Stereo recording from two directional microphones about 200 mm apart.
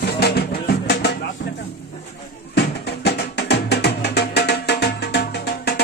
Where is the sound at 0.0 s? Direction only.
55° left (ahead or behind).